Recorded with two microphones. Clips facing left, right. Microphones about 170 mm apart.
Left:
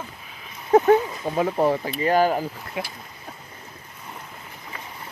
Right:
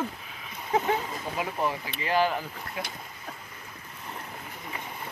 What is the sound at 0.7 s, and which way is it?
Speech, 40° left (ahead or behind).